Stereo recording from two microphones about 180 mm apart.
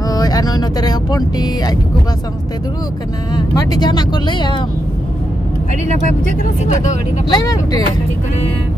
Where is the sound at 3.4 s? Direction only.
25° left (ahead or behind).